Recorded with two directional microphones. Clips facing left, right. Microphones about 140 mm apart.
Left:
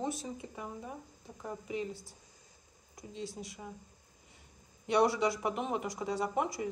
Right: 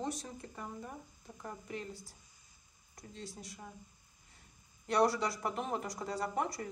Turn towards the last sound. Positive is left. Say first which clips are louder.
# left 3 dB
turn(degrees=0)  # may be behind; listen again after turning